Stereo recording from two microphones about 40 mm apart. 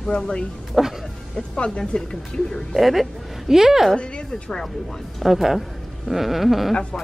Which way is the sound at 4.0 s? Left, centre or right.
Left.